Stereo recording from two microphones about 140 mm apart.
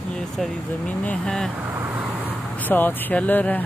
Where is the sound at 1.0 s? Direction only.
5° left (ahead or behind).